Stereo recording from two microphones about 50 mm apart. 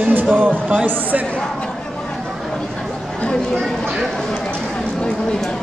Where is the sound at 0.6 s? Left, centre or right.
Right.